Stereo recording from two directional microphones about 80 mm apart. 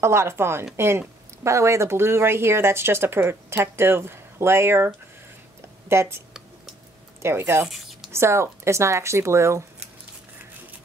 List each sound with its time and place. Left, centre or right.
0.0 s speech: right
7.6 s a sound: centre
8.1 s speech: right